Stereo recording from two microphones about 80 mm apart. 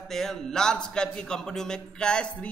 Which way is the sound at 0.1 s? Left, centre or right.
Centre.